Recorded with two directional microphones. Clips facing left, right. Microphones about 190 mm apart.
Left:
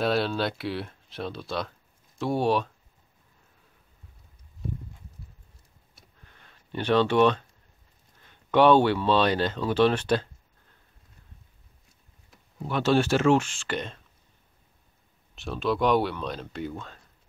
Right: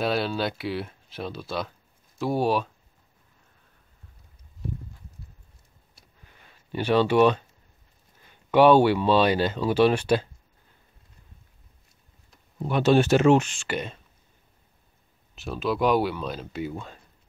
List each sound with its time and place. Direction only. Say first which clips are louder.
0.0 s speech: even; centre (ahead or behind)
5.9 s a sound: even; 5° right (ahead or behind)
8.2 s speech: right 2 dB; 10° right (ahead or behind)
12.6 s speech: right 3 dB; 15° right (ahead or behind)
15.3 s speech: even; 5° right (ahead or behind)